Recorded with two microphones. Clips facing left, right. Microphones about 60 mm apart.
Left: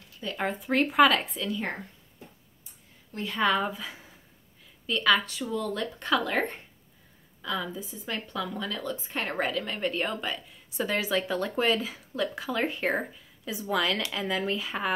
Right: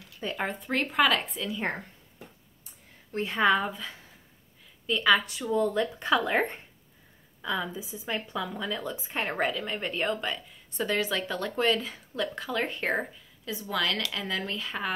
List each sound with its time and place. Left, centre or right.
0.4 s a woman's voice: centre
3.1 s a woman's voice: right
3.3 s a woman's voice: centre
3.6 s speech: centre
4.8 s a woman's voice: centre; by 5.9 s right
5.9 s a woman's voice: centre